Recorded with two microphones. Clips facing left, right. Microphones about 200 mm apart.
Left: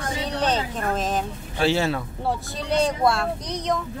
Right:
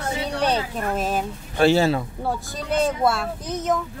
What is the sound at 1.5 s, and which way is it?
Speech, 50° right (ahead or behind).